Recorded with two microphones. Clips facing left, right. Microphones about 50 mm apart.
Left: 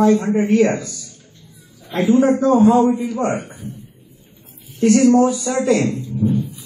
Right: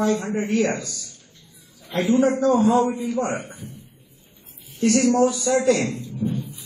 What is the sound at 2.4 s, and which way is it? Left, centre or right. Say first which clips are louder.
Speech: left 5 dB; left.